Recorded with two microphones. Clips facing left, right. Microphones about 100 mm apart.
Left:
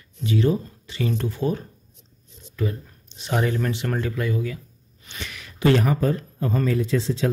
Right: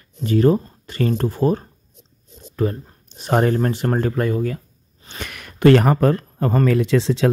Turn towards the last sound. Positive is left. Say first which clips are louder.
# right 5 dB
turn(degrees=-90)